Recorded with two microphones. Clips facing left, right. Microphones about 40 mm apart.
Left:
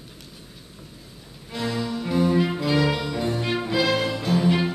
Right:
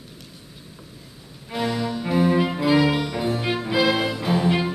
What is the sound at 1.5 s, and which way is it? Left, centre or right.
Music, centre.